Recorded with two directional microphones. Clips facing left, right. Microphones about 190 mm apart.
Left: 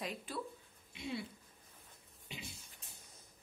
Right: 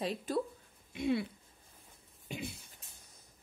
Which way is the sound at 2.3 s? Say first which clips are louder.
Right 9 dB; 45° right (ahead or behind).